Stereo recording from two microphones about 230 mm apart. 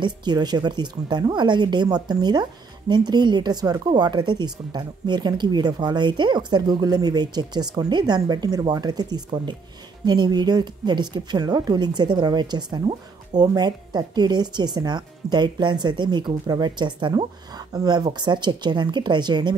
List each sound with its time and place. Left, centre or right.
0.0 s a woman's voice: centre